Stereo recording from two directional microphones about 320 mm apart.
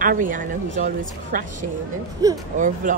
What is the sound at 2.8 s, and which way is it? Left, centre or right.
Speech, right.